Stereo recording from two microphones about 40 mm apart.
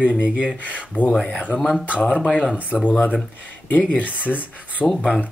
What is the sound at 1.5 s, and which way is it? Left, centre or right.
Speech, left.